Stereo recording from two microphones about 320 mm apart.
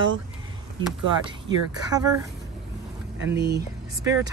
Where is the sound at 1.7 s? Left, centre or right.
Centre.